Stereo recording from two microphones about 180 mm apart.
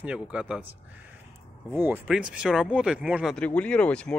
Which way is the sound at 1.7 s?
10° right (ahead or behind).